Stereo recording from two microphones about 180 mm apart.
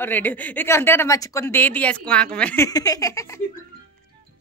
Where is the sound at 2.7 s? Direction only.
20° left (ahead or behind).